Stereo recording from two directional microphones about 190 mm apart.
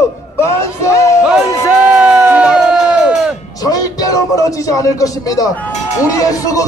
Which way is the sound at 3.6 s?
20° left (ahead or behind).